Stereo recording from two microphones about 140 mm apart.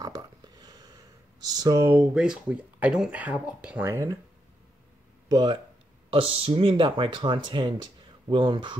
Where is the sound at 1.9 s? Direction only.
10° right (ahead or behind).